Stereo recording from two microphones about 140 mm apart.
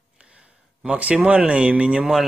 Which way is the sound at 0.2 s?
5° right (ahead or behind).